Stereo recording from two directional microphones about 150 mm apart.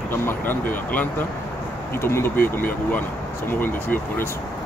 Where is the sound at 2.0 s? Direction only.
15° left (ahead or behind).